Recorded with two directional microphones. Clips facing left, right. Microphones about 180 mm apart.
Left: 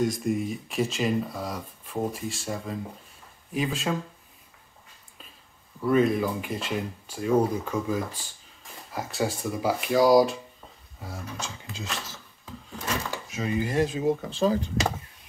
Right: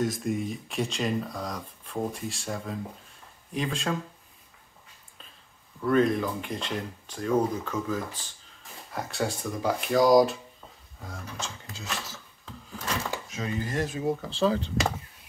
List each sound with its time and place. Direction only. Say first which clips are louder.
0.0 s speech: left 2 dB; centre (ahead or behind)
5.8 s speech: left 1 dB; 5° left (ahead or behind)
8.9 s speech: left 2 dB; centre (ahead or behind)
13.3 s speech: left 6 dB; 10° left (ahead or behind)
14.2 s speech: left 1 dB; 45° left (ahead or behind)